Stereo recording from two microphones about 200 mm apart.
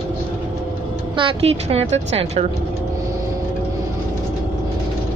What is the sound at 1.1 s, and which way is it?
A woman's voice, 30° right (ahead or behind).